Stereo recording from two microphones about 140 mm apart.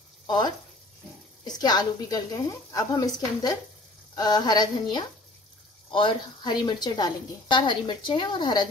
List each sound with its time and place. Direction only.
1.4 s a woman's voice: 30° left (ahead or behind)